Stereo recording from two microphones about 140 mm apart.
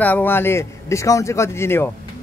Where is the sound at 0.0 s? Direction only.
15° left (ahead or behind).